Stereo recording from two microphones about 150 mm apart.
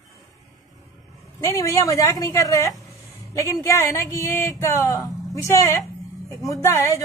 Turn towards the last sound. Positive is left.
turn(degrees=20)  # may be behind; listen again after turning